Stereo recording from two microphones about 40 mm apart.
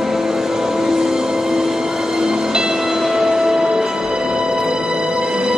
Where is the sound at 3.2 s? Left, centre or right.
Centre.